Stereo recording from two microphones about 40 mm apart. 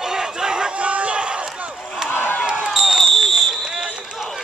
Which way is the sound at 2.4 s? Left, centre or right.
Right.